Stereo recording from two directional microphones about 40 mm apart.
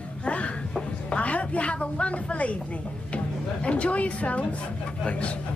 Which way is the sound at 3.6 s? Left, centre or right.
Left.